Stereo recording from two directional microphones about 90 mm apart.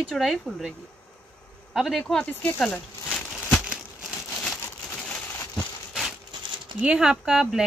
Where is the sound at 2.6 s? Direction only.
10° left (ahead or behind).